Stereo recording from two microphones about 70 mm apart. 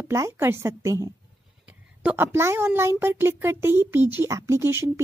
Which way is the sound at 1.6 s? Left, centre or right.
Right.